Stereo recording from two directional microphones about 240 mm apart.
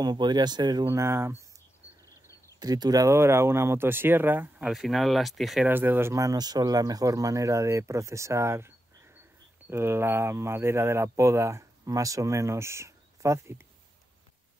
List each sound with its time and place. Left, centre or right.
0.0 s speech: centre
2.6 s speech: centre